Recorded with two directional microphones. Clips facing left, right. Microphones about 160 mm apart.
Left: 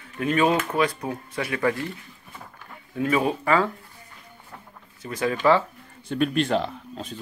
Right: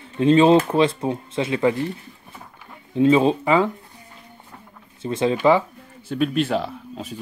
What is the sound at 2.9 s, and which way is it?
Speech, 25° right (ahead or behind).